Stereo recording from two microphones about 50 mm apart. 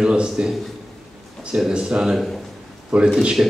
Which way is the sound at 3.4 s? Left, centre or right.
Right.